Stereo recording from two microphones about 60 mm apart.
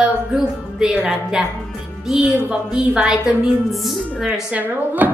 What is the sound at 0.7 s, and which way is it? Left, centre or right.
Speech, centre.